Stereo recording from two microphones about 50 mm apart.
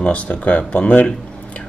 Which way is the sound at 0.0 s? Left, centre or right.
Left.